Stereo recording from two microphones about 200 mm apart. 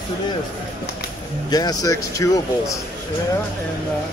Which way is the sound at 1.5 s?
20° left (ahead or behind).